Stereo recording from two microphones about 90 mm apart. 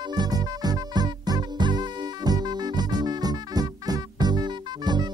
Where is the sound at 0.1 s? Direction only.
50° right (ahead or behind).